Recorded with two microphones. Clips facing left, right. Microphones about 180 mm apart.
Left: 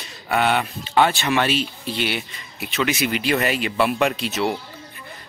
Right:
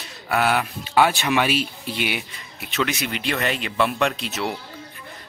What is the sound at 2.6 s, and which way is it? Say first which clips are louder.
Speech: left 3 dB; 5° left (ahead or behind).